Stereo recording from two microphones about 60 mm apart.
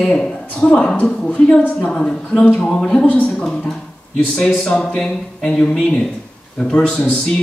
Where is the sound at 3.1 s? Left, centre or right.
Left.